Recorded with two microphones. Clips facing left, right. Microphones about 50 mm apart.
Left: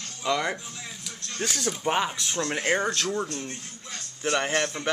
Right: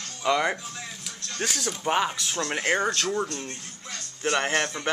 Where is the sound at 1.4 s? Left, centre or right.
Centre.